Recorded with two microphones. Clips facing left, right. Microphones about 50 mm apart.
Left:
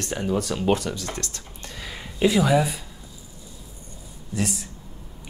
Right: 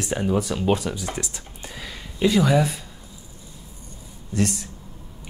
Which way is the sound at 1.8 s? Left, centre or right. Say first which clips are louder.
Even; centre.